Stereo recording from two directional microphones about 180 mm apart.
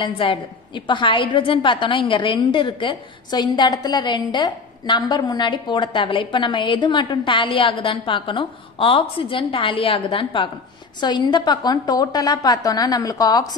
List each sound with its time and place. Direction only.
0.0 s a woman's voice: 30° left (ahead or behind)